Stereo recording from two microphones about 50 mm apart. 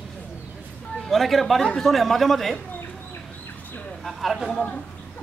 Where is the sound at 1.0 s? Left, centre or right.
Centre.